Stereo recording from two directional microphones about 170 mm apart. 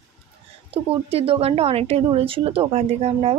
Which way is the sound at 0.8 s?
35° right (ahead or behind).